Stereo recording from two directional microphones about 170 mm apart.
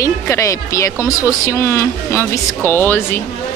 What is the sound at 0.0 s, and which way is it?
Speech, 20° left (ahead or behind).